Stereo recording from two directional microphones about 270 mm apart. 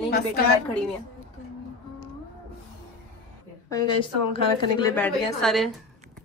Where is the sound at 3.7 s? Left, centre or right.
Centre.